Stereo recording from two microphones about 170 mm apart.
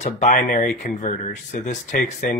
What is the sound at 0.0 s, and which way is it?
Speech, 50° left (ahead or behind).